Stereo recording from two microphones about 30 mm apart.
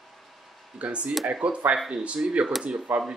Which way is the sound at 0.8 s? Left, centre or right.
Right.